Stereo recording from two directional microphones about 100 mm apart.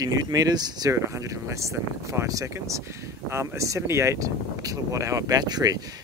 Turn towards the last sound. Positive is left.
turn(degrees=-40)  # may be behind; listen again after turning